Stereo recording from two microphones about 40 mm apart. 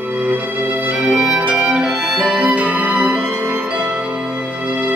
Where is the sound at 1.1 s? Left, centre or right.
Centre.